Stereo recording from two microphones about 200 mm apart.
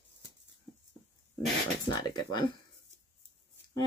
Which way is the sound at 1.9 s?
20° left (ahead or behind).